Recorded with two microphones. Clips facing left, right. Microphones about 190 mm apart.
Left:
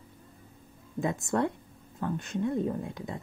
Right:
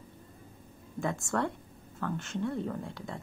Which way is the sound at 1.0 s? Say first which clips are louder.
Left 3 dB; 20° left (ahead or behind).